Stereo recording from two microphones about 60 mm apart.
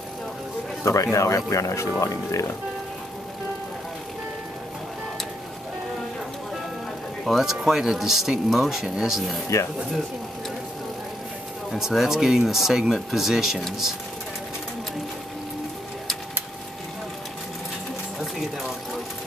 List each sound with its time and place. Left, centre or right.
0.8 s speech: left
7.2 s speech: centre
11.7 s speech: centre